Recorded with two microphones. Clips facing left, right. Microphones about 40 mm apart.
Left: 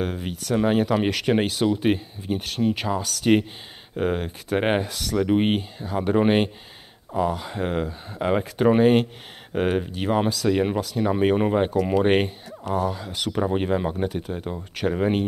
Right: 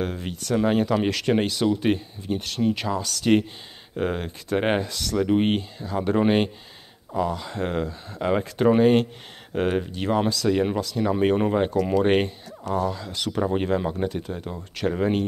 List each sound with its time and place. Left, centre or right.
0.0 s speech: centre
7.2 s speech: centre